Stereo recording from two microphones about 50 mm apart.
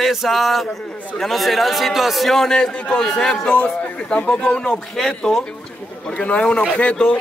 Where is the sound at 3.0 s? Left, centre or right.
Centre.